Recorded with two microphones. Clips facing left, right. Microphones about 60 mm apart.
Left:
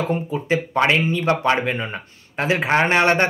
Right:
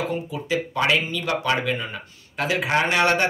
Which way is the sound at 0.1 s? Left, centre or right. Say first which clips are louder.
Left 4 dB; left.